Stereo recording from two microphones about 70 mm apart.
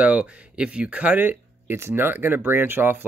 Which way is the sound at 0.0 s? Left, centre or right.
Centre.